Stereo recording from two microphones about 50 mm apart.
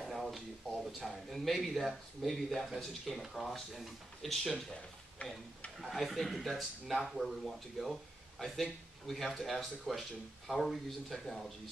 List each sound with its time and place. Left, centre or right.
0.0 s a sound: centre
0.9 s speech: centre
5.2 s speech: left
5.8 s speech: centre